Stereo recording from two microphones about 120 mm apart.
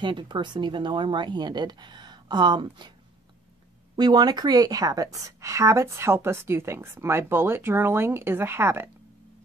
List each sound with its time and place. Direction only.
0.0 s speech: 40° right (ahead or behind)
3.9 s a woman's voice: 35° right (ahead or behind); by 8.9 s 20° right (ahead or behind)